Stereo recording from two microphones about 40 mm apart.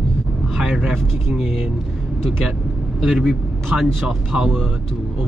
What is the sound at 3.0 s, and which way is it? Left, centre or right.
Speech, centre.